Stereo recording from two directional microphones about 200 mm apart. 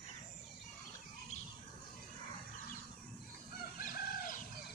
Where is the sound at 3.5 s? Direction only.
45° left (ahead or behind).